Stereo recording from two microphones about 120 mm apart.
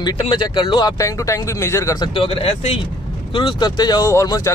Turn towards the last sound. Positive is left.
turn(degrees=30)  # may be behind; listen again after turning